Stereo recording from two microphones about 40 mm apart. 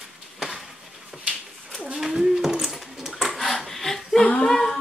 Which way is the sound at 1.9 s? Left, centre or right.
Centre.